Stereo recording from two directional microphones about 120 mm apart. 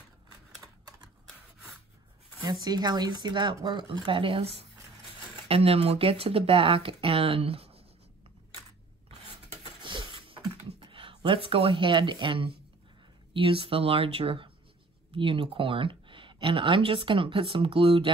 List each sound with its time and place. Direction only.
2.6 s speech: 35° right (ahead or behind); by 7.8 s 55° right (ahead or behind)
9.8 s computer keyboard: 40° right (ahead or behind)
13.3 s speech: 50° right (ahead or behind)